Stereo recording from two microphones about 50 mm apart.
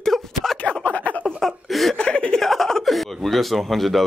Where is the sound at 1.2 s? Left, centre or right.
Centre.